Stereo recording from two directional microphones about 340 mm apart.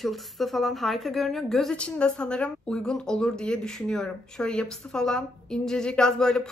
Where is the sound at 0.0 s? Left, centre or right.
Centre.